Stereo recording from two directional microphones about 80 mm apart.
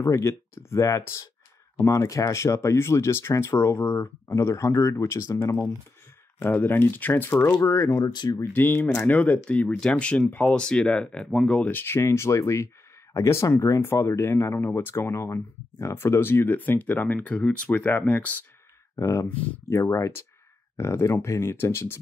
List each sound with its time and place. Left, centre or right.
0.0 s speech: left
6.4 s speech: left
7.9 s speech: left
8.5 s speech: left
9.0 s speech: centre
11.6 s speech: left
18.9 s speech: left
19.2 s speech: left
19.7 s speech: left